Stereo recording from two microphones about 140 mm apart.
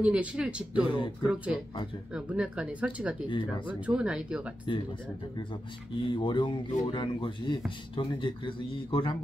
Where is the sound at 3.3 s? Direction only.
35° left (ahead or behind).